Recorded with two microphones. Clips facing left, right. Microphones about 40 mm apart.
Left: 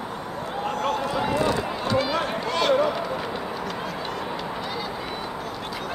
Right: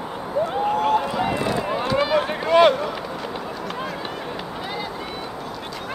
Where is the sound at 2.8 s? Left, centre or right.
Centre.